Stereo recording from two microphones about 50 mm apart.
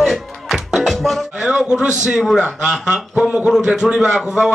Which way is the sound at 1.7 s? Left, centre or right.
Centre.